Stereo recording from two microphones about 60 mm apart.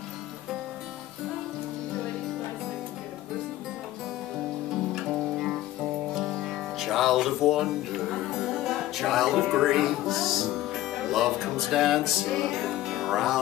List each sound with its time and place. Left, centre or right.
4.9 s guitar: centre
6.4 s speech: centre
12.3 s music: centre